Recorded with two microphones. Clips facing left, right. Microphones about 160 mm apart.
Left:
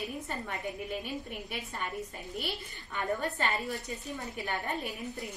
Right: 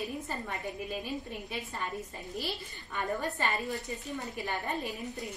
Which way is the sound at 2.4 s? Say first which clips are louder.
Even; centre (ahead or behind).